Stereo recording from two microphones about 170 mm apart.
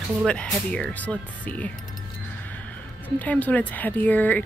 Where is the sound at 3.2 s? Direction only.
10° left (ahead or behind).